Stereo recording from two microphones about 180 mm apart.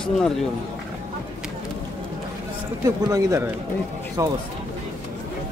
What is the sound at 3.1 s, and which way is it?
A man's voice, 20° right (ahead or behind).